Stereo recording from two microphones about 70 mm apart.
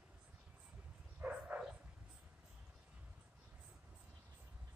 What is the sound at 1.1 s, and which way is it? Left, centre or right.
Dog, right.